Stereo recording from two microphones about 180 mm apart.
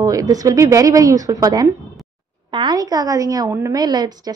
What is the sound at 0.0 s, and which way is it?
A woman's voice, 20° right (ahead or behind).